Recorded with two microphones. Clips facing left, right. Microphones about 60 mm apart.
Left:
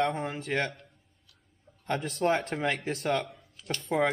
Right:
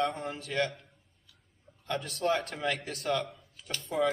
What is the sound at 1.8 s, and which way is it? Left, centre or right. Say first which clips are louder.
A man's voice: left 3 dB; left.